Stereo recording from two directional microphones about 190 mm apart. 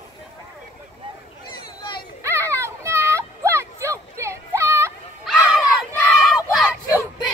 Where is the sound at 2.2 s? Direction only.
15° right (ahead or behind).